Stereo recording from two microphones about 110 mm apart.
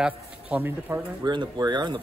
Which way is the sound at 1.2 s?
40° right (ahead or behind).